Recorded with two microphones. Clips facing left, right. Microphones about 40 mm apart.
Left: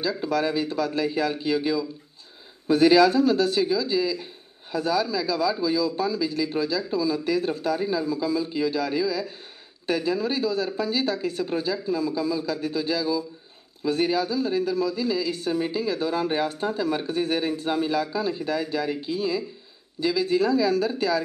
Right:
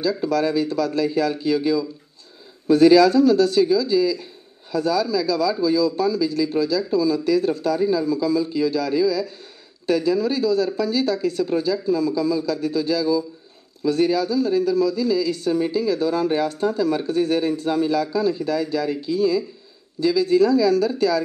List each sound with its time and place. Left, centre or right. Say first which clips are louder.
0.0 s speech: right 4 dB; left